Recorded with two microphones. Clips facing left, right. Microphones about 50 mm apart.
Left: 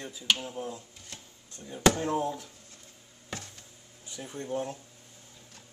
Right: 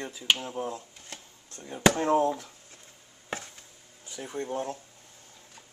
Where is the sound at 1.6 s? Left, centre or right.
Right.